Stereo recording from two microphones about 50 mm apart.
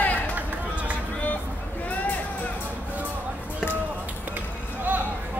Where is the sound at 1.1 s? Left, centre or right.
Left.